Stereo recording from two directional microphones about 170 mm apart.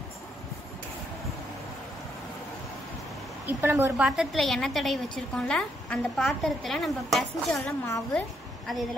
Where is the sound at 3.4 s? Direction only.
15° right (ahead or behind).